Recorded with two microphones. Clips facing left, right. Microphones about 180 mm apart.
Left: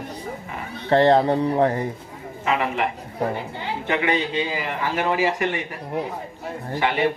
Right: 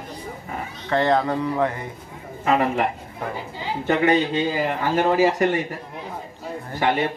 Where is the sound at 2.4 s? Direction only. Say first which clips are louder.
Right 3 dB; 40° right (ahead or behind).